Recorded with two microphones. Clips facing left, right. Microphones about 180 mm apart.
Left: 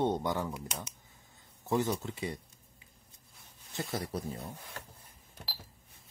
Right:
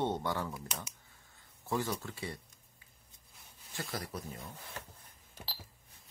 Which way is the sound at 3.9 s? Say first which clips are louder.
Left 5 dB; 25° left (ahead or behind).